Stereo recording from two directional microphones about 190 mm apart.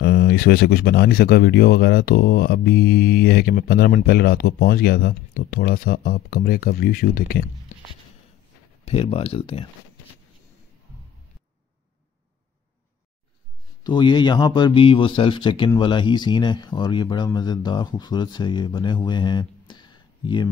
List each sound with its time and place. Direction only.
0.0 s speech: 60° left (ahead or behind)
8.8 s speech: 30° left (ahead or behind)
13.8 s speech: 25° left (ahead or behind)
19.7 s a sound: 25° left (ahead or behind)